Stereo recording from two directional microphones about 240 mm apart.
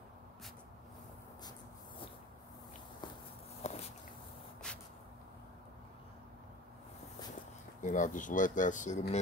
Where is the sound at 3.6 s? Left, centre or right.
Left.